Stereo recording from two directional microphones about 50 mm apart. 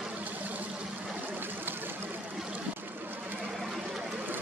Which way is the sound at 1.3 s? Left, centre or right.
Right.